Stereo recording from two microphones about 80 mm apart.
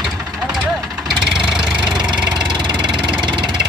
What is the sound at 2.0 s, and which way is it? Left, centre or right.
Engine, right.